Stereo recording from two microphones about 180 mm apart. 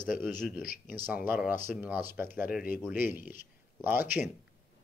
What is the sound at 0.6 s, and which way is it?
Speech, 50° left (ahead or behind).